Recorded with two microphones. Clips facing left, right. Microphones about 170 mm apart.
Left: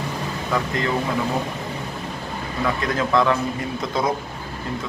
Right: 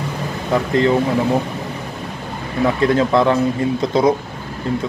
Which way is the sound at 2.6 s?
30° right (ahead or behind).